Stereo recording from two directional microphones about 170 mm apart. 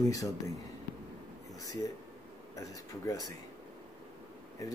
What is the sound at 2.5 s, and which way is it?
Speech, 20° left (ahead or behind).